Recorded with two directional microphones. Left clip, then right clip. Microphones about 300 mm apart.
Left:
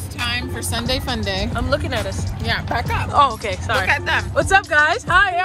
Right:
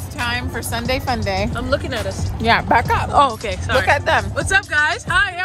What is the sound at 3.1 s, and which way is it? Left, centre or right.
Speech, centre.